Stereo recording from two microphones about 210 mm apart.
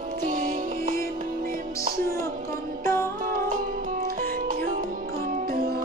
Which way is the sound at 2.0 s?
45° right (ahead or behind).